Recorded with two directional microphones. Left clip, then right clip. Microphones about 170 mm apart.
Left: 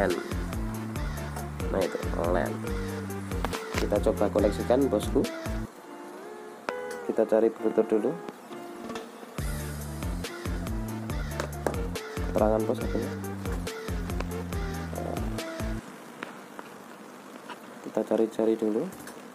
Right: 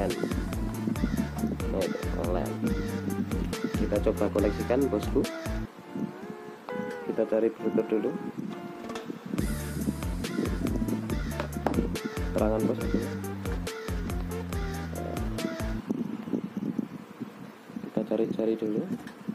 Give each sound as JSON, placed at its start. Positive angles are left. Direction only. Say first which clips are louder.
{"t": 0.0, "sound": "music", "louder": "left 2 dB", "side_deg": 0}
{"t": 5.0, "sound": "speech", "louder": "left 1 dB", "side_deg": 0}
{"t": 6.7, "sound": "speech", "louder": "left 2 dB", "side_deg": 5}
{"t": 9.3, "sound": "music", "louder": "right 4 dB", "side_deg": 0}
{"t": 17.9, "sound": "speech", "louder": "left 3 dB", "side_deg": 15}